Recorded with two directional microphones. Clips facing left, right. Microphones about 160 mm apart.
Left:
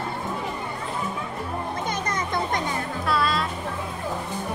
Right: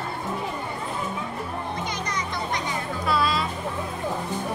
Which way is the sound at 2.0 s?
50° left (ahead or behind).